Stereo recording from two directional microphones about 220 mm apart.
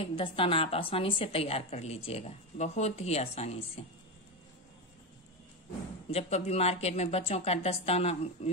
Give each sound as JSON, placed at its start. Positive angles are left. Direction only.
{"t": 0.0, "sound": "a woman's voice", "side_deg": 25}
{"t": 6.0, "sound": "a woman's voice", "side_deg": 30}